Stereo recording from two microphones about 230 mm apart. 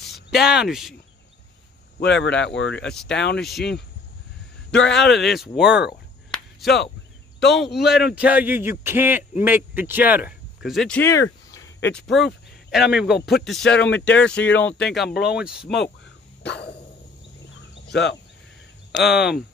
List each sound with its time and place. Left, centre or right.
0.0 s speech: centre
2.0 s speech: left
2.9 s speech: centre
4.8 s speech: left
5.1 s speech: centre
6.3 s a sound: centre
7.4 s speech: left
7.7 s speech: centre
11.5 s a sound: centre
11.9 s speech: centre
16.4 s speech: left
17.8 s speech: left
18.9 s speech: centre